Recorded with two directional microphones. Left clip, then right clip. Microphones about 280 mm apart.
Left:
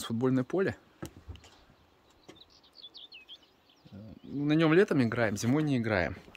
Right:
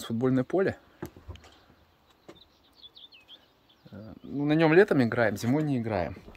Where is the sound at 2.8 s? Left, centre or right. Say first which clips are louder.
Left 1 dB; left.